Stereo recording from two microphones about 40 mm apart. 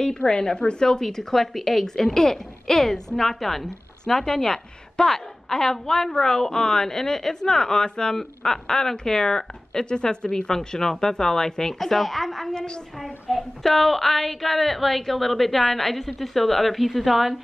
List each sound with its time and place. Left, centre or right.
0.0 s a woman's voice: centre